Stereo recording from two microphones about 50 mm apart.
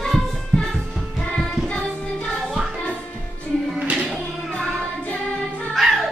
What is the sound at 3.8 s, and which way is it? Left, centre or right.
Music, right.